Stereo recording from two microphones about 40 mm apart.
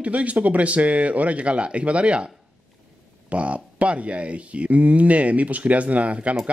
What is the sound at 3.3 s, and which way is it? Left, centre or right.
Speech, right.